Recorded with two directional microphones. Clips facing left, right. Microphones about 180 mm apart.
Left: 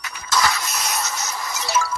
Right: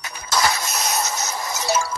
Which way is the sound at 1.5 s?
40° right (ahead or behind).